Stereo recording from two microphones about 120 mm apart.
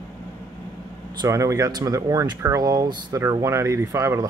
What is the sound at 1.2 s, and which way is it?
Speech, 25° right (ahead or behind).